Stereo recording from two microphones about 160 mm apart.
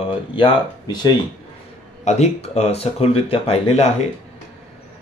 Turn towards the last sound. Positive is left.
turn(degrees=40)  # may be behind; listen again after turning